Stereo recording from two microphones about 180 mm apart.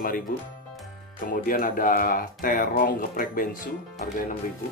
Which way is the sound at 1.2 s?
50° left (ahead or behind).